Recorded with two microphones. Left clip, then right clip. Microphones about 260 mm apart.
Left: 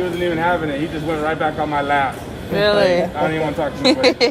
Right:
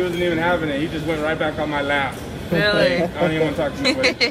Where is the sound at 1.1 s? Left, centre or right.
Centre.